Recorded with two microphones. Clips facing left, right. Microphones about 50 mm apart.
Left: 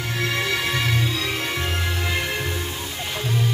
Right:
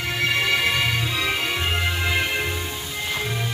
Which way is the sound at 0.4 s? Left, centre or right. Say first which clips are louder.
Right 3 dB; right.